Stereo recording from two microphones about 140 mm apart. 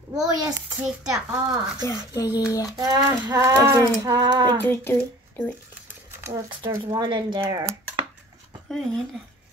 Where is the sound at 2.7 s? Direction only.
30° right (ahead or behind).